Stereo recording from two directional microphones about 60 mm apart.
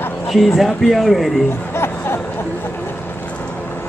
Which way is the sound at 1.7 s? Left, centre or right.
Left.